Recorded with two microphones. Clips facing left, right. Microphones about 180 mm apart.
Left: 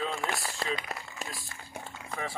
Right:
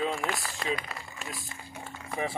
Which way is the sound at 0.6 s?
30° left (ahead or behind).